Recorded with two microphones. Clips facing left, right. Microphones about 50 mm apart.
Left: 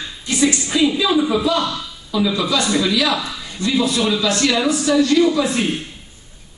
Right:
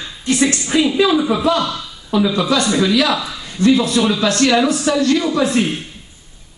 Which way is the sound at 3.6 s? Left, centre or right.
Right.